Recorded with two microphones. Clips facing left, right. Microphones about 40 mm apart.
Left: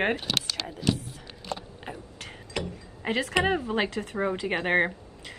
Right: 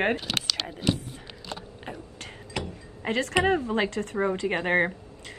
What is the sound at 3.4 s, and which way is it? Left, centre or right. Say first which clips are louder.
Speech: right 2 dB; centre.